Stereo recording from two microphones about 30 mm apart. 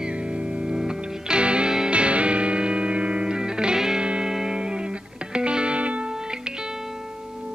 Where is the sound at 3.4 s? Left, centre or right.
Right.